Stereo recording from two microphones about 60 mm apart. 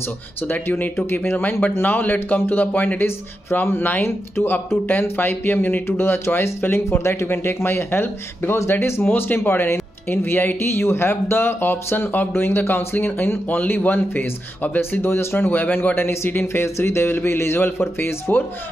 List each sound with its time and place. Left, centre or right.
0.5 s speech: left
3.6 s speech: left
7.0 s speech: left
7.2 s speech: left